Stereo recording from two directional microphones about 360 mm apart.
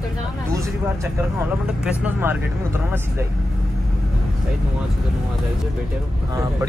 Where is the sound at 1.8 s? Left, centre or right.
Centre.